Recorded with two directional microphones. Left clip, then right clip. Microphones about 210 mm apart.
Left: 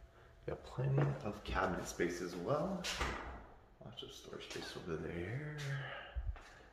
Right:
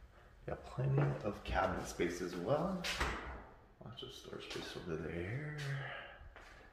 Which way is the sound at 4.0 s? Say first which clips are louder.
Right 1 dB; 30° right (ahead or behind).